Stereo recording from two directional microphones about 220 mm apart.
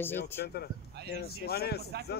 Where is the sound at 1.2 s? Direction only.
45° left (ahead or behind).